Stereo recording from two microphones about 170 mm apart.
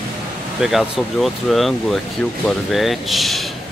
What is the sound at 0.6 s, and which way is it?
Speech, 5° right (ahead or behind).